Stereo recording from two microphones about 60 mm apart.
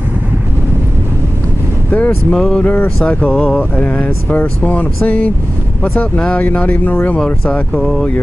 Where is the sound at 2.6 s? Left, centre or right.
Left.